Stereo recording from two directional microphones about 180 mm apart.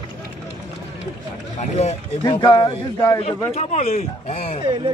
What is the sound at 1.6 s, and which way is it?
Speech, 40° left (ahead or behind).